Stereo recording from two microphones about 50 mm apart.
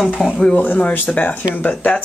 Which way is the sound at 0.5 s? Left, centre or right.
Left.